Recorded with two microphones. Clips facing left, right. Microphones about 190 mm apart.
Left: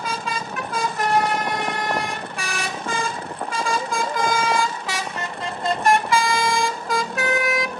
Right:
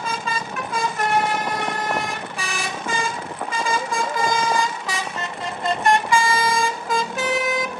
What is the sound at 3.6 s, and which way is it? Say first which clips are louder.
Vehicle: even; centre (ahead or behind).